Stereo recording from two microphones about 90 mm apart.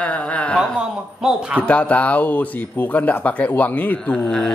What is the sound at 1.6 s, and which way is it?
Speech, 15° left (ahead or behind).